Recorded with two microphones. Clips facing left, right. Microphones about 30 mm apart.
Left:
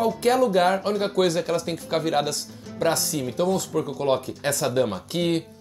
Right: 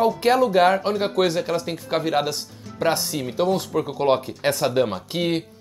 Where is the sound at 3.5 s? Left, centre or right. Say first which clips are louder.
Right 2 dB; right.